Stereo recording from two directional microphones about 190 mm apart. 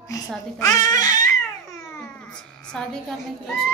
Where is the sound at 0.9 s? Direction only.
20° left (ahead or behind).